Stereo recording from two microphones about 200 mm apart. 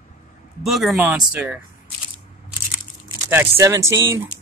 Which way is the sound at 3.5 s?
15° right (ahead or behind).